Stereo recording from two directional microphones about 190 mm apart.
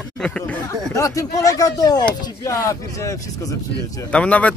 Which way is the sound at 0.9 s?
15° left (ahead or behind).